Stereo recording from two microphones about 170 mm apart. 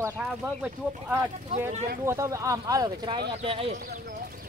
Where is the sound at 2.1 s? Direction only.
15° right (ahead or behind); by 3.7 s 35° right (ahead or behind).